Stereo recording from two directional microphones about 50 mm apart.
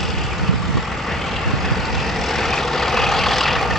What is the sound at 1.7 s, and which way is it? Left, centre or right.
Vehicle, centre.